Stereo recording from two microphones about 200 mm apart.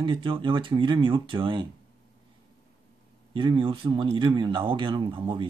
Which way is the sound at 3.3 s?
25° right (ahead or behind).